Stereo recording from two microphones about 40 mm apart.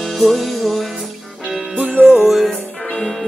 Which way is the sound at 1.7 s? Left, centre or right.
Right.